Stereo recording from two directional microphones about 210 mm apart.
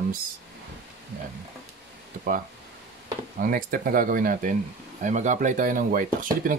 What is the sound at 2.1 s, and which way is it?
Speech, 35° right (ahead or behind).